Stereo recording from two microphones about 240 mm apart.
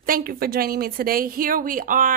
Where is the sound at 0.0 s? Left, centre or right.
Right.